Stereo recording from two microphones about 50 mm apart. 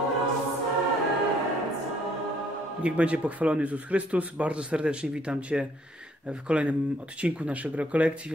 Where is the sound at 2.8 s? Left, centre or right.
Right.